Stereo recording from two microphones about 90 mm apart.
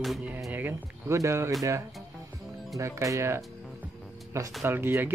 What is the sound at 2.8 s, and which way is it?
Speech, 35° right (ahead or behind).